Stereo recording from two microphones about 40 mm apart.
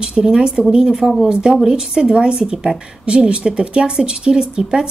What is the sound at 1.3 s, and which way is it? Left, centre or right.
Speech, right.